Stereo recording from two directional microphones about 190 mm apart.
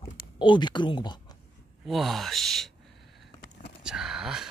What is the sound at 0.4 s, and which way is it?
Speech, 25° left (ahead or behind).